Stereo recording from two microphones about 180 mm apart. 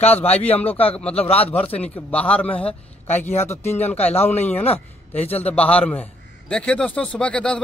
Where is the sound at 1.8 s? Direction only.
10° left (ahead or behind).